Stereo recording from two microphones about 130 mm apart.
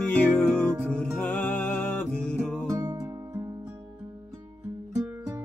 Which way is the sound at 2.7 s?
25° right (ahead or behind).